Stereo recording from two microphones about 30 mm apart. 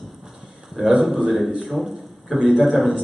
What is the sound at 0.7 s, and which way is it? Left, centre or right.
A man's voice, centre.